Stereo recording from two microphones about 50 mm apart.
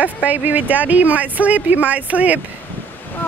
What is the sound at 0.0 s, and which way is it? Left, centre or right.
Speech, right.